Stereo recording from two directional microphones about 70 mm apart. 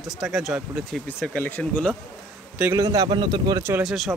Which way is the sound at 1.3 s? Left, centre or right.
Left.